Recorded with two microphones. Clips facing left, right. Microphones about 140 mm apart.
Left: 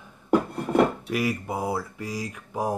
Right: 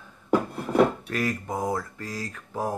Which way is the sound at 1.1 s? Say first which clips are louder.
Left 1 dB; 10° left (ahead or behind).